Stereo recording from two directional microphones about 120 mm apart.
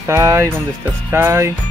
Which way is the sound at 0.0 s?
20° right (ahead or behind).